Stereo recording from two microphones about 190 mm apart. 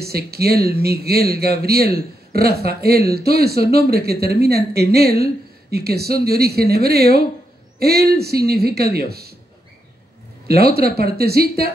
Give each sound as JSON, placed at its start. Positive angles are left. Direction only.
{"t": 0.0, "sound": "a woman's voice", "side_deg": -55}
{"t": 10.5, "sound": "a woman's voice", "side_deg": -55}